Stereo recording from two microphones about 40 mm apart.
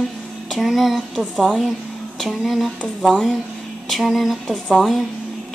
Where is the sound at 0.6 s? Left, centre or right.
Centre.